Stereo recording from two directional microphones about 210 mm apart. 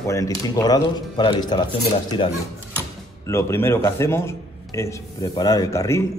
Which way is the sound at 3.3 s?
10° left (ahead or behind).